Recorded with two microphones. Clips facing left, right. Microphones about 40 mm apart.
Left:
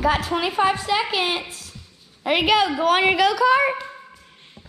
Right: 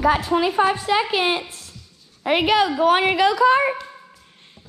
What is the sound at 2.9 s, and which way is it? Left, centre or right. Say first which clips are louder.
Speech: even; left.